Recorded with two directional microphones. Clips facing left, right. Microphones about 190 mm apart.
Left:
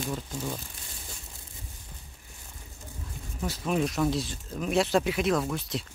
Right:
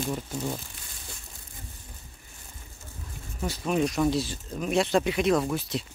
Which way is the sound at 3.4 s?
Centre (ahead or behind).